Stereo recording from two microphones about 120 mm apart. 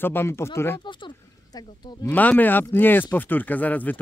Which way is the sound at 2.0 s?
15° left (ahead or behind).